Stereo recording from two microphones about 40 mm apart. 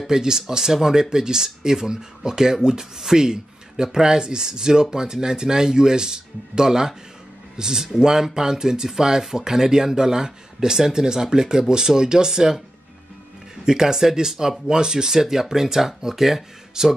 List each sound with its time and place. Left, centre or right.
0.0 s speech: centre
13.7 s speech: centre